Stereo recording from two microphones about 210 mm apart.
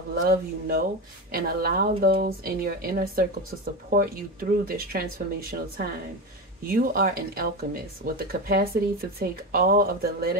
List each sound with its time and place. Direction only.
0.2 s speech: 45° right (ahead or behind)